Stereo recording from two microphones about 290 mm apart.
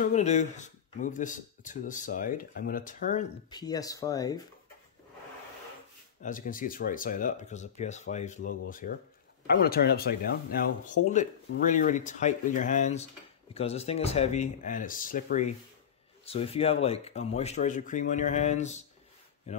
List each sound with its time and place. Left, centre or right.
0.0 s speech: left
3.4 s speech: centre
6.2 s speech: left